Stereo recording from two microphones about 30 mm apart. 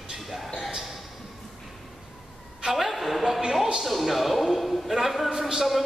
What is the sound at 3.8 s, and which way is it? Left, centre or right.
A man's voice, centre.